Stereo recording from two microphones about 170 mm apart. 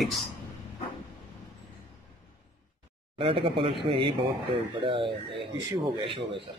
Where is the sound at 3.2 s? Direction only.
30° right (ahead or behind).